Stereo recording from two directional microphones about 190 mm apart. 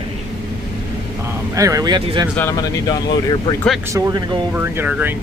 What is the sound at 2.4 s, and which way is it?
Speech, 15° left (ahead or behind).